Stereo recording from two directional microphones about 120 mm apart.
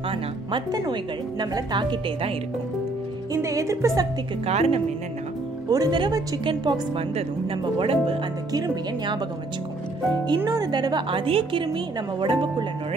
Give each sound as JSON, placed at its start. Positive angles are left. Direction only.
{"t": 0.1, "sound": "a woman's voice", "side_deg": -40}
{"t": 3.3, "sound": "speech", "side_deg": -25}
{"t": 4.5, "sound": "speech", "side_deg": -60}
{"t": 5.7, "sound": "a woman's voice", "side_deg": -35}
{"t": 8.5, "sound": "a woman's voice", "side_deg": -35}
{"t": 10.2, "sound": "a woman's voice", "side_deg": -40}